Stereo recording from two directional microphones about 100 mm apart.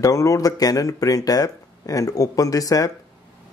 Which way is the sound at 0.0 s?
35° left (ahead or behind).